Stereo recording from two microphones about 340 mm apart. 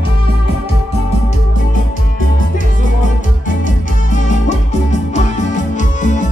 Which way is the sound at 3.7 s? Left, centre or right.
Left.